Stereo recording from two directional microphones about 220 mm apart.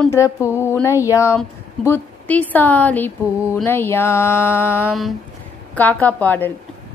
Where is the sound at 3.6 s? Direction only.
10° left (ahead or behind).